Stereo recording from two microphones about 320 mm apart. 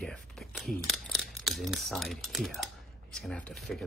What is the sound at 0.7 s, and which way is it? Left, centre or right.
Speech, centre.